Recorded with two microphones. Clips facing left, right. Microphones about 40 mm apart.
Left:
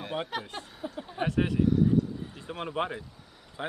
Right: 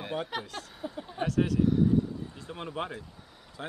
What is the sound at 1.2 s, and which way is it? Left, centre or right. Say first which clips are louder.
Speech: even; left.